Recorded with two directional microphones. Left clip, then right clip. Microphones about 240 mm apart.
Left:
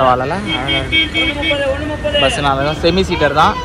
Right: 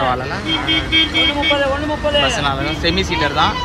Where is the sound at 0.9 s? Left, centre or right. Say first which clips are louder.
Right 1 dB; right.